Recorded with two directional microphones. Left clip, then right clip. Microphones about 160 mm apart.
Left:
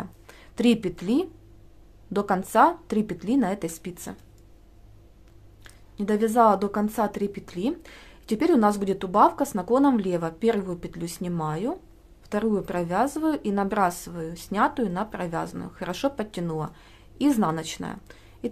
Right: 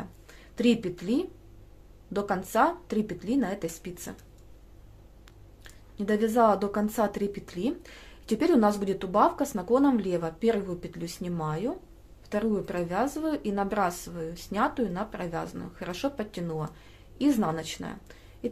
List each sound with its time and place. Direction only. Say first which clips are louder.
0.3 s a woman's voice: left 3 dB; 35° left (ahead or behind)
5.6 s a woman's voice: left 3 dB; 25° left (ahead or behind)